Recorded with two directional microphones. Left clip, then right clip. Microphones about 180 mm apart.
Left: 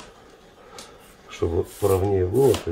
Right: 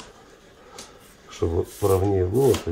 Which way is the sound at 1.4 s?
10° right (ahead or behind).